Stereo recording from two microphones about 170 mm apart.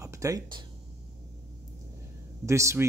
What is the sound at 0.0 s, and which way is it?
Speech, 20° right (ahead or behind).